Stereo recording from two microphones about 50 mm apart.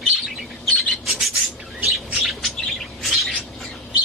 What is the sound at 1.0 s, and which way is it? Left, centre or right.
Bird, centre.